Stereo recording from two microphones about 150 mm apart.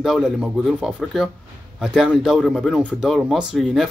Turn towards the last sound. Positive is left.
turn(degrees=0)  # may be behind; listen again after turning